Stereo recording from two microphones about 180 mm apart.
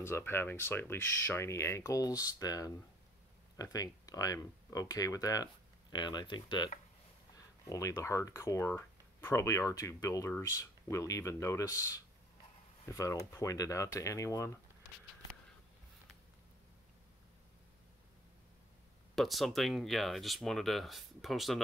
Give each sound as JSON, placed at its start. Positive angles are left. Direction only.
{"t": 0.0, "sound": "speech", "side_deg": 10}
{"t": 19.1, "sound": "speech", "side_deg": 0}